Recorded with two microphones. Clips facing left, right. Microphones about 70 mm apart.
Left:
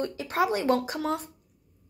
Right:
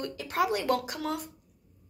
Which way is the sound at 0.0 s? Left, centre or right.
Left.